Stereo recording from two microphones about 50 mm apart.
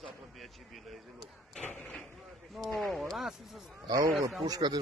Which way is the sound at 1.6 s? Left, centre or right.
Left.